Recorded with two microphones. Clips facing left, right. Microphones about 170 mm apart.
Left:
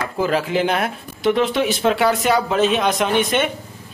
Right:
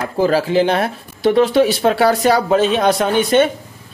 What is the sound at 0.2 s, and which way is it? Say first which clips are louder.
Speech: right 5 dB; 35° right (ahead or behind).